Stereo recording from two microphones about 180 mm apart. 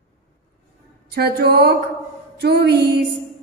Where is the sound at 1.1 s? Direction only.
60° right (ahead or behind).